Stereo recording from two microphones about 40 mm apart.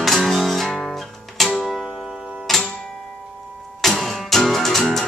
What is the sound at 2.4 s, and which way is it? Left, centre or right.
Music, centre.